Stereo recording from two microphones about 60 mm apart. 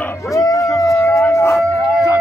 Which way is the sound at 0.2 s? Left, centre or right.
Left.